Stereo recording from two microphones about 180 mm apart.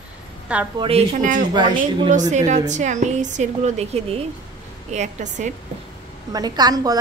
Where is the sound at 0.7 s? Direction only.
35° right (ahead or behind).